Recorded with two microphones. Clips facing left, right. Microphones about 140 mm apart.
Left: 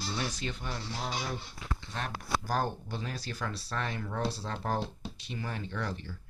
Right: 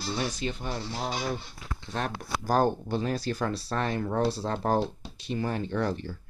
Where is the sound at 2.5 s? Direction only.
45° right (ahead or behind).